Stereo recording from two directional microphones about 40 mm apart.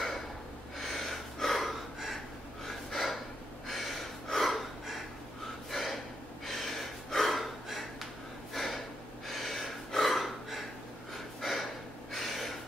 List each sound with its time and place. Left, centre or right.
0.7 s a sound: centre
2.9 s gasp: centre
3.6 s snort: centre
5.7 s gasp: centre
12.1 s gasp: centre